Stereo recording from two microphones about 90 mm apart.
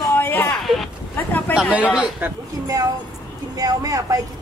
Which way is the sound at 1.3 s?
20° left (ahead or behind).